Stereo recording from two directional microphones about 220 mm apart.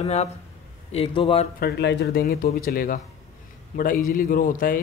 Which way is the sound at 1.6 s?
50° left (ahead or behind).